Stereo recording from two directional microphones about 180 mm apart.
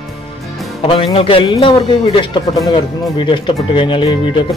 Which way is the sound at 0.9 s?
30° left (ahead or behind).